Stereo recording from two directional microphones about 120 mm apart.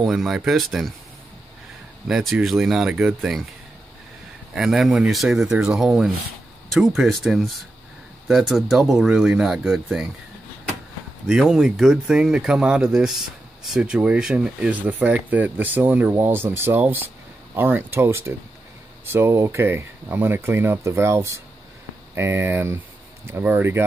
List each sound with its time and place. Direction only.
0.0 s speech: centre (ahead or behind)
2.0 s speech: 5° right (ahead or behind)
4.6 s speech: 5° right (ahead or behind)
11.2 s speech: 5° right (ahead or behind); by 23.9 s 20° right (ahead or behind)